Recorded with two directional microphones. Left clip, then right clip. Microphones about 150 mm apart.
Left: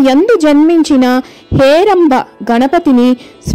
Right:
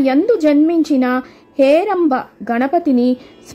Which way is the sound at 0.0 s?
30° left (ahead or behind).